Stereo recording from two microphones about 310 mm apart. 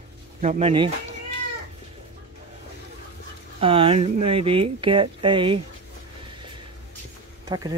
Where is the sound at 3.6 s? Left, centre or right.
Centre.